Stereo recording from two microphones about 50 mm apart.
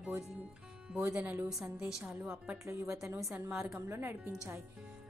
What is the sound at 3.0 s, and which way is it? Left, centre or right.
Speech, right.